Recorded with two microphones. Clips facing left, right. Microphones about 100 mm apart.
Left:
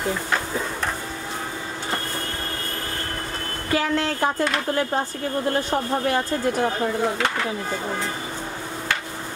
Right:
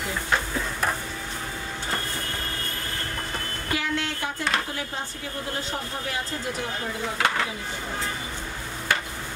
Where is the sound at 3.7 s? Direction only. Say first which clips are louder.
Left 6 dB; 40° left (ahead or behind).